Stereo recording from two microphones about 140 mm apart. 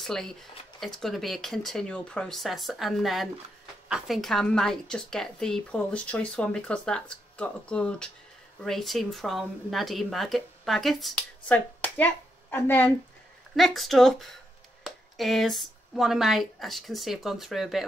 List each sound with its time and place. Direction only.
0.0 s a woman's voice: 5° left (ahead or behind)
13.6 s speech: centre (ahead or behind)